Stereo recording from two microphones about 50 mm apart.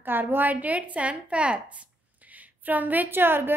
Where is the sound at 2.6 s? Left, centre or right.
Right.